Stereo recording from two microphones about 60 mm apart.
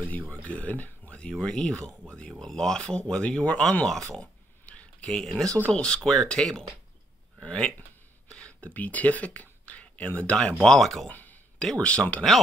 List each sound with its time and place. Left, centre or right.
0.3 s speech: left
1.4 s speech: centre
8.3 s a sound: centre
8.7 s speech: left; by 11.1 s centre
11.1 s a sound: left
11.5 s speech: centre